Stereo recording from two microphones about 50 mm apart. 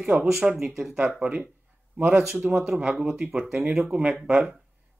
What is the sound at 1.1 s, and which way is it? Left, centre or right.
Speech, right.